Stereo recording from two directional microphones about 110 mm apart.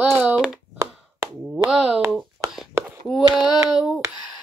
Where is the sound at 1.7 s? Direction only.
5° right (ahead or behind).